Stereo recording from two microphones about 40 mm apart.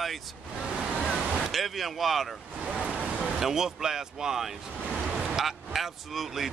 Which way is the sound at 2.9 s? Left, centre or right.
Right.